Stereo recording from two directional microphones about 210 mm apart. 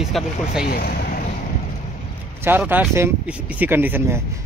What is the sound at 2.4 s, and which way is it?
Speech, 10° right (ahead or behind).